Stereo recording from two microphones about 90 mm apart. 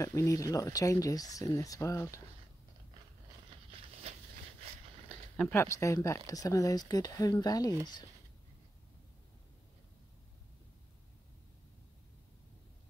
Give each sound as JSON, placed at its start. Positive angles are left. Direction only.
{"t": 0.0, "sound": "speech", "side_deg": 35}
{"t": 5.5, "sound": "speech", "side_deg": 30}